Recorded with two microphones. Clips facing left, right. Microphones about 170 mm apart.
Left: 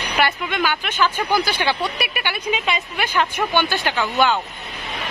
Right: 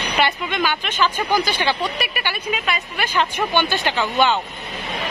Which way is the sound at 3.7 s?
15° right (ahead or behind).